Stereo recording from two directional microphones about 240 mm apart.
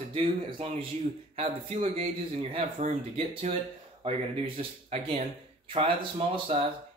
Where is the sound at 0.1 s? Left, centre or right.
Right.